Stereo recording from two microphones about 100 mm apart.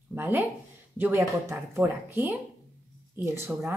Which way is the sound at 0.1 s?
20° right (ahead or behind).